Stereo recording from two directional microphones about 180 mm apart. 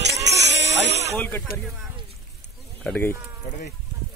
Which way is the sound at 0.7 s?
75° right (ahead or behind).